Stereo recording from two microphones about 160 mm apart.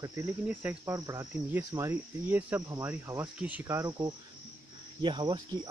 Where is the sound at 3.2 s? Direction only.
10° right (ahead or behind); by 5.7 s 25° right (ahead or behind).